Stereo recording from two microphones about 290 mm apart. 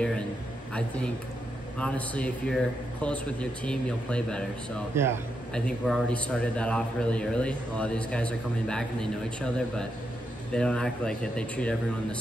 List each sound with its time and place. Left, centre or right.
0.7 s a man's voice: centre
4.9 s a man's voice: centre
5.5 s a man's voice: centre